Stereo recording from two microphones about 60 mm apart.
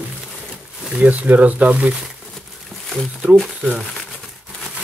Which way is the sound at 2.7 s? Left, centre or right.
Centre.